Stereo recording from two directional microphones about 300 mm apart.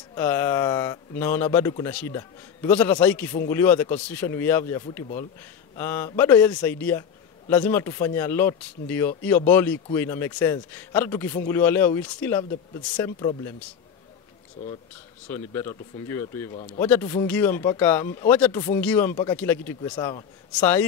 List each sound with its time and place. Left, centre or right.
0.1 s a man's voice: centre
16.5 s speech: left
16.8 s a man's voice: centre